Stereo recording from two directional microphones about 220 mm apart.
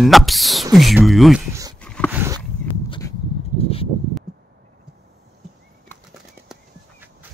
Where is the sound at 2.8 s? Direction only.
20° left (ahead or behind).